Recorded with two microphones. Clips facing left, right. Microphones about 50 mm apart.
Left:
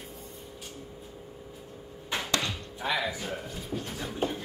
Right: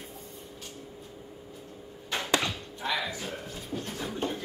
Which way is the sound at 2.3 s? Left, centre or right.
Centre.